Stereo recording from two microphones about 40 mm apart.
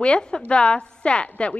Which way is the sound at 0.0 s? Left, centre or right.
Left.